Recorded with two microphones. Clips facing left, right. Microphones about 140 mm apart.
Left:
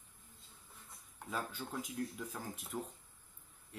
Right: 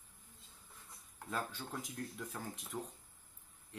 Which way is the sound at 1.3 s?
5° left (ahead or behind).